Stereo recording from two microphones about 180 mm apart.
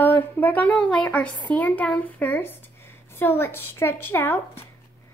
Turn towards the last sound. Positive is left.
turn(degrees=10)  # may be behind; listen again after turning